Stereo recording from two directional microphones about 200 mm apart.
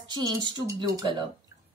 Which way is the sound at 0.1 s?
20° right (ahead or behind).